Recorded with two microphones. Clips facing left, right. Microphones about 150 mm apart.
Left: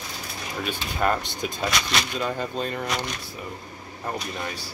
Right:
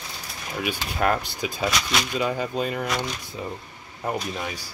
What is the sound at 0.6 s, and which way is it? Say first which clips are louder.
Speech: right 1 dB; 5° right (ahead or behind).